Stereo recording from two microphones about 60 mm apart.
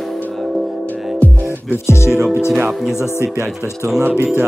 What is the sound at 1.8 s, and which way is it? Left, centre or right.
Speech, left.